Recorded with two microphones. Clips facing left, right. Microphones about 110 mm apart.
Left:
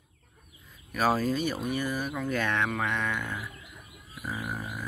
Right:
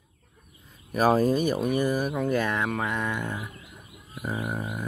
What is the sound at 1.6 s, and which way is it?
Speech, 45° right (ahead or behind).